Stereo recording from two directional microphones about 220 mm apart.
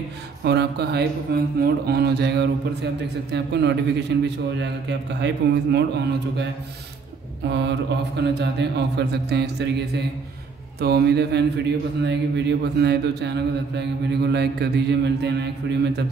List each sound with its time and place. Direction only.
0.4 s speech: 50° right (ahead or behind)